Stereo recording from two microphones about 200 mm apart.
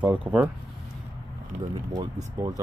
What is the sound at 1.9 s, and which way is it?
Speech, 15° right (ahead or behind).